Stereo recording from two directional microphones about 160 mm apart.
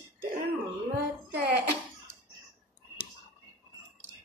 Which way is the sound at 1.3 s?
90° right.